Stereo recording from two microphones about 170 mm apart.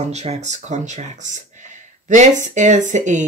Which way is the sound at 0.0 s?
40° right (ahead or behind).